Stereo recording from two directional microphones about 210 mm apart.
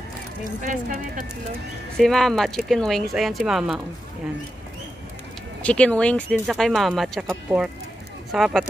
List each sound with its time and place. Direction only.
0.6 s speech: 40° right (ahead or behind)
2.0 s speech: centre (ahead or behind)
5.6 s speech: 5° left (ahead or behind)